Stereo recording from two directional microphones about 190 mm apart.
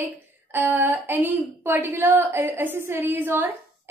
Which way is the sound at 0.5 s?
10° right (ahead or behind).